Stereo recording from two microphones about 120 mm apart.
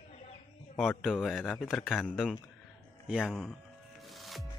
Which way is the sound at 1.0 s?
Centre (ahead or behind).